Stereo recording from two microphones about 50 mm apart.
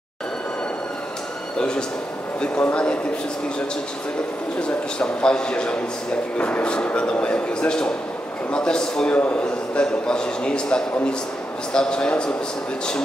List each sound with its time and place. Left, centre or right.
1.6 s a man's voice: centre
4.6 s a man's voice: centre
9.1 s a man's voice: left
9.4 s a man's voice: centre